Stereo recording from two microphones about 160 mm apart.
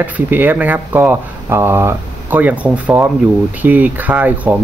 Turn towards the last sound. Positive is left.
turn(degrees=-10)  # may be behind; listen again after turning